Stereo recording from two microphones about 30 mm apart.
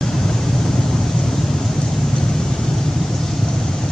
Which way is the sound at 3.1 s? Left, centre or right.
Centre.